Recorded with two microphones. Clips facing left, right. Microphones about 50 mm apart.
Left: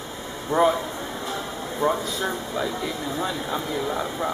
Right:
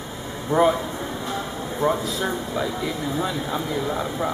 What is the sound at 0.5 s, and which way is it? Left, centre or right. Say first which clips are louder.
Speech: right 1 dB; centre.